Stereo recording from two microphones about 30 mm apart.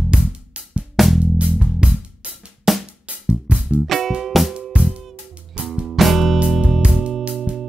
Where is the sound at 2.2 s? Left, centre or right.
Right.